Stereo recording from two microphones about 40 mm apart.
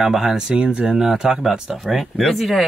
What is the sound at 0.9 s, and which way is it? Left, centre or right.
Speech, centre.